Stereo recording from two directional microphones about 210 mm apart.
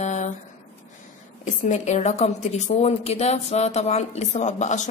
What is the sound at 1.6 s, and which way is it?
A woman's voice, 35° left (ahead or behind).